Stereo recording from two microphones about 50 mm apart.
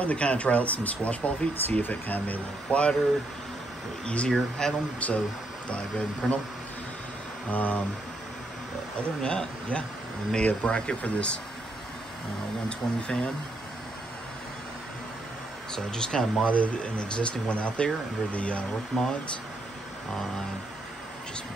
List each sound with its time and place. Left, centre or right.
0.0 s speech: left
4.0 s speech: left
4.3 s speech: centre
5.0 s speech: left
7.5 s speech: left
9.2 s speech: centre
12.6 s speech: left
15.7 s speech: centre
16.4 s speech: left